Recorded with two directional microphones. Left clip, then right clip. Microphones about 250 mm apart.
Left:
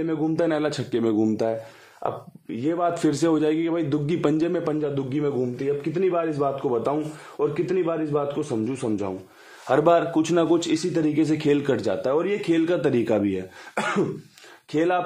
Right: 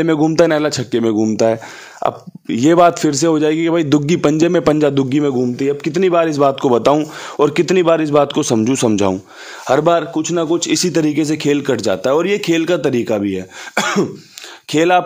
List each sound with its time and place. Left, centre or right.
0.0 s a man's voice: right
0.5 s speech: right
2.0 s speech: right
2.9 s a man's voice: right
9.7 s speech: right
10.7 s speech: right
13.7 s speech: right
14.7 s speech: right